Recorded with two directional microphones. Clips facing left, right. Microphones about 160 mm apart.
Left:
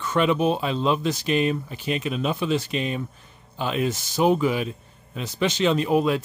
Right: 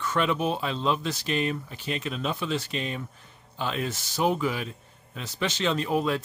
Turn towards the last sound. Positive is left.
turn(degrees=15)  # may be behind; listen again after turning